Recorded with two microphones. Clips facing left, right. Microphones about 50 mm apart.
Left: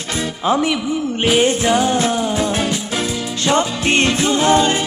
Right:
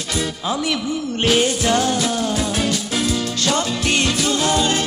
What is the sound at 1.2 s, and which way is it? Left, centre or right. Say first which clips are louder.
Music: left 2 dB; centre.